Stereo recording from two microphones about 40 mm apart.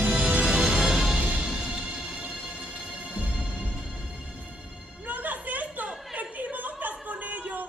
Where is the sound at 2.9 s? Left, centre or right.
Right.